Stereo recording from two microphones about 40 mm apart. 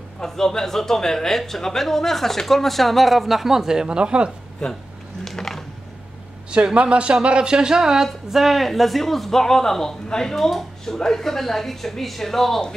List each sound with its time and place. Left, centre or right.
0.2 s speech: centre
4.0 s a man's voice: right
5.2 s a sound: centre
6.5 s a man's voice: right; by 12.6 s centre